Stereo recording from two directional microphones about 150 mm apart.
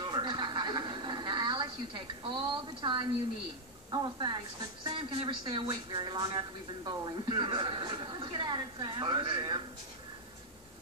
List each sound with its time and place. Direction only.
0.0 s television: 30° right (ahead or behind)
3.9 s speech: 30° right (ahead or behind)